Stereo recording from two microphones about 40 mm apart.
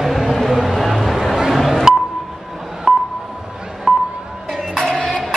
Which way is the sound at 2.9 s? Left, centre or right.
Centre.